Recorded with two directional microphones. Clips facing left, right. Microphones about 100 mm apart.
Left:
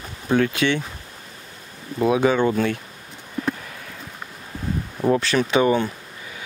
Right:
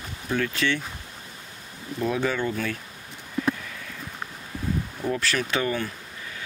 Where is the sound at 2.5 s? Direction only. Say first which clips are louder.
Left 7 dB; 30° left (ahead or behind).